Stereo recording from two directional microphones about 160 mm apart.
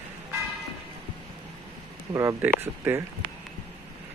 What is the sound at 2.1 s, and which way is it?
Speech, 15° right (ahead or behind).